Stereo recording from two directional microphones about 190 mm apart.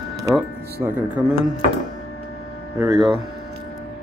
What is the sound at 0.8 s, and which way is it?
Speech, 10° right (ahead or behind).